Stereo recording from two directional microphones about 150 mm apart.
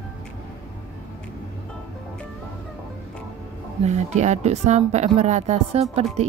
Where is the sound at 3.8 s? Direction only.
50° right (ahead or behind).